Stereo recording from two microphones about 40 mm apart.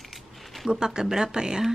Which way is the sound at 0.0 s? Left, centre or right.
Centre.